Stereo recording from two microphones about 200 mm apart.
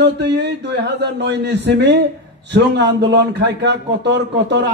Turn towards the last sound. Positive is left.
turn(degrees=-60)  # may be behind; listen again after turning